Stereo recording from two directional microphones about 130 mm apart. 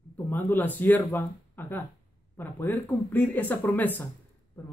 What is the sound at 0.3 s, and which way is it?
Speech, 15° left (ahead or behind).